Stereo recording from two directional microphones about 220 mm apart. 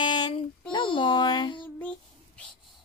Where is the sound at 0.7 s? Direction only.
20° left (ahead or behind).